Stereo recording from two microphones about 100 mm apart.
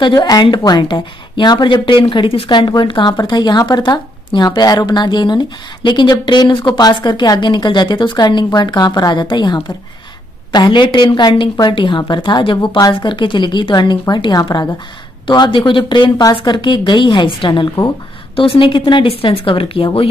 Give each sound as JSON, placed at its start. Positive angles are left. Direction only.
{"t": 0.0, "sound": "speech", "side_deg": 45}
{"t": 2.7, "sound": "speech", "side_deg": 50}
{"t": 12.9, "sound": "speech", "side_deg": 55}